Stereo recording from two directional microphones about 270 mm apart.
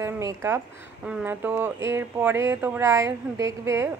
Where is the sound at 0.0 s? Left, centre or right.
Centre.